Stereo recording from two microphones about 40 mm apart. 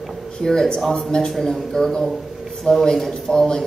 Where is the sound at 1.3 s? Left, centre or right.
Centre.